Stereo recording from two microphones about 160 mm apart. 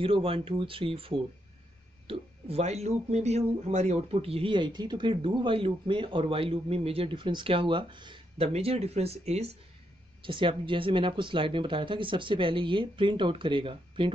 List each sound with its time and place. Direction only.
0.0 s speech: 35° right (ahead or behind)